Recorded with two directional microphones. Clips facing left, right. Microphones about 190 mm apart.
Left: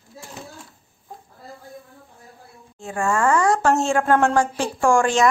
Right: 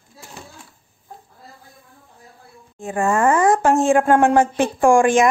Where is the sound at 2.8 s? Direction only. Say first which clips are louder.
Right 3 dB; 15° right (ahead or behind).